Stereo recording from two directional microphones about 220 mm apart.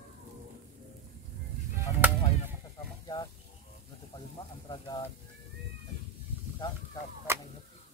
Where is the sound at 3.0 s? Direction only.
15° left (ahead or behind).